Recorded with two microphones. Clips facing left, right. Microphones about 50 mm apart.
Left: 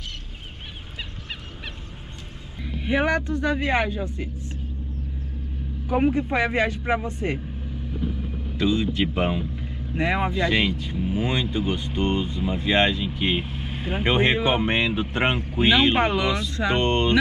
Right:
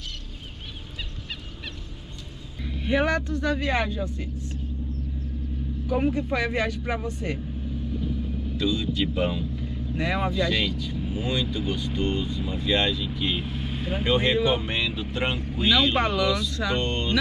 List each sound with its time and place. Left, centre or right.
2.6 s speech: centre
5.9 s speech: left
8.5 s speech: left
13.5 s vehicle: centre
14.0 s speech: left